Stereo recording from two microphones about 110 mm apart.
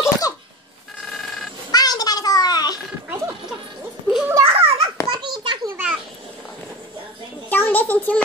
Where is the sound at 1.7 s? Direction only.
35° left (ahead or behind).